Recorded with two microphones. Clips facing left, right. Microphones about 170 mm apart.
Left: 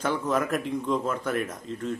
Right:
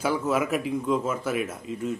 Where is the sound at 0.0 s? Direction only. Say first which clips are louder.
Right 1 dB; 10° right (ahead or behind).